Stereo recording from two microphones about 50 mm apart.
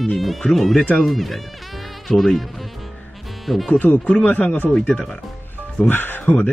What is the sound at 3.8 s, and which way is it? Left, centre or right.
Speech, left.